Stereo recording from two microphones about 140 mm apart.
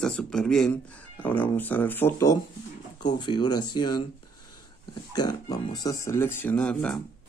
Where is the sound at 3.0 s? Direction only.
30° left (ahead or behind).